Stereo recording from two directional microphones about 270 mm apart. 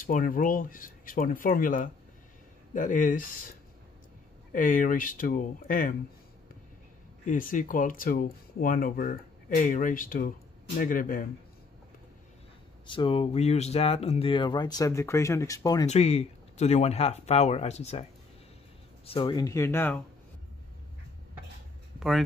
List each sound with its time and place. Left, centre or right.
0.0 s speech: left
7.2 s speech: left
12.9 s speech: centre
15.9 s speech: left
19.0 s speech: centre